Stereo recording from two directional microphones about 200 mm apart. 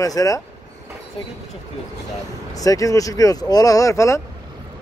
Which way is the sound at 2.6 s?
15° left (ahead or behind).